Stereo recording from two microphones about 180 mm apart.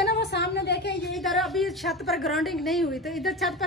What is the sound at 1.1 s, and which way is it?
A woman's voice, centre (ahead or behind).